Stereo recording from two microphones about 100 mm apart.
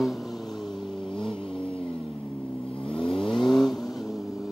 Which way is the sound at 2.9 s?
60° left (ahead or behind).